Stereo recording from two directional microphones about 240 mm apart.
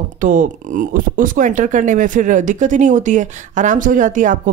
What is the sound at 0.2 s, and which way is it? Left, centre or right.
Speech, right.